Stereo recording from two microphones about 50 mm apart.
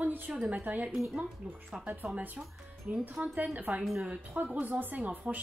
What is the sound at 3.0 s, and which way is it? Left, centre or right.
Speech, right.